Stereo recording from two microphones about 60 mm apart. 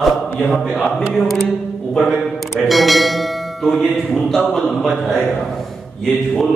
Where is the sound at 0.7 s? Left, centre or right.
Centre.